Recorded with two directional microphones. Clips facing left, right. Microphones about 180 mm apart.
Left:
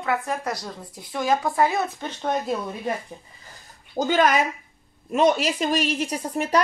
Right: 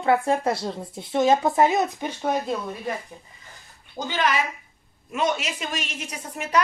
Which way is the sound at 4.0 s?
45° left (ahead or behind).